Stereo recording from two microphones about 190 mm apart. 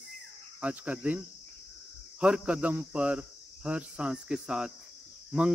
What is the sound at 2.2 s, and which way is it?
Speech, 5° right (ahead or behind).